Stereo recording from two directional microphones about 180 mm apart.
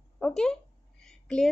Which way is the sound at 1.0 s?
5° left (ahead or behind).